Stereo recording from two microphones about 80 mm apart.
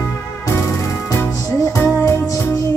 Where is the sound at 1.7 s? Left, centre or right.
Left.